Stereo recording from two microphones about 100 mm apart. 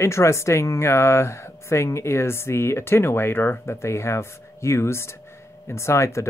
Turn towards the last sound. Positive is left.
turn(degrees=30)  # may be behind; listen again after turning